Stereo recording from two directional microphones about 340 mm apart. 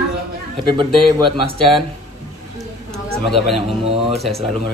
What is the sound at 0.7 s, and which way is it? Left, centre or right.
Speech, centre.